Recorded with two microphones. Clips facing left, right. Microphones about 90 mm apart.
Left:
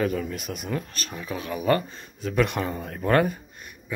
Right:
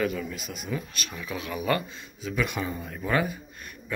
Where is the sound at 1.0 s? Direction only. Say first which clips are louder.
Left 2 dB; 35° left (ahead or behind).